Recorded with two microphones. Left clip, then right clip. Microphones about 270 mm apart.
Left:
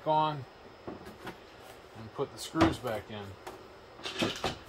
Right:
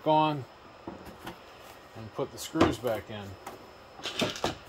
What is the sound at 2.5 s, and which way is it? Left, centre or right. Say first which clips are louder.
Speech: right 1 dB; right.